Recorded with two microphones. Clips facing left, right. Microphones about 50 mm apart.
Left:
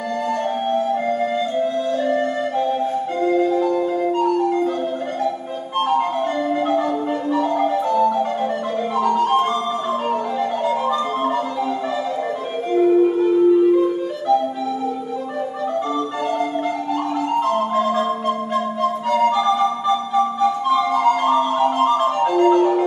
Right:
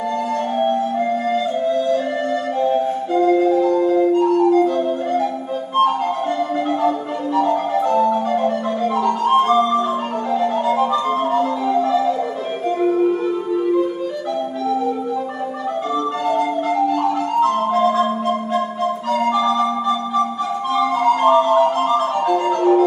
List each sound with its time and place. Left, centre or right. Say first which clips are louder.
7.9 s marimba: right 2 dB; right
11.3 s music: right 4 dB; centre
21.0 s music: right 2 dB; centre
21.4 s music: right 2 dB; centre